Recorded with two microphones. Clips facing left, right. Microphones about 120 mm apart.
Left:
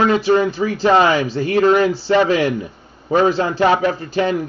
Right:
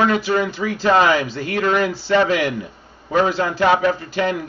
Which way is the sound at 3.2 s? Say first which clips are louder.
Left 2 dB; 30° left (ahead or behind).